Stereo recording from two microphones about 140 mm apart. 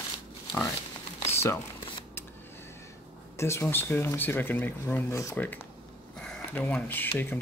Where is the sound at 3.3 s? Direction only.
20° left (ahead or behind).